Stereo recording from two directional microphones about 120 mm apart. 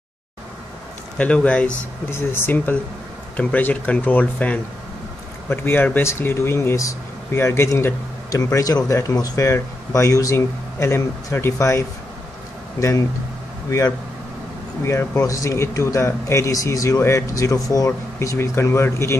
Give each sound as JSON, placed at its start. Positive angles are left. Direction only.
{"t": 1.1, "sound": "speech", "side_deg": 10}
{"t": 13.7, "sound": "speech", "side_deg": 25}